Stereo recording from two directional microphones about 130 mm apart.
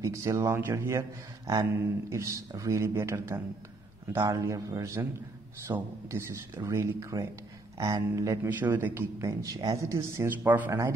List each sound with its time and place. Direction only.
0.0 s speech: 25° right (ahead or behind)
8.5 s speech: 15° right (ahead or behind)